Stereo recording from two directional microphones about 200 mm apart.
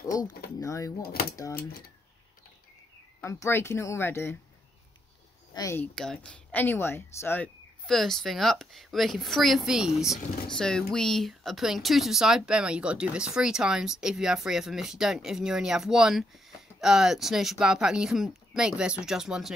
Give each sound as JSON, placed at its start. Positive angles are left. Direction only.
{"t": 0.0, "sound": "speech", "side_deg": 15}
{"t": 3.2, "sound": "speech", "side_deg": 15}
{"t": 5.5, "sound": "speech", "side_deg": 15}